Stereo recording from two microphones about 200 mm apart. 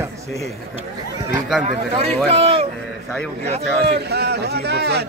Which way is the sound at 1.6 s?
30° right (ahead or behind).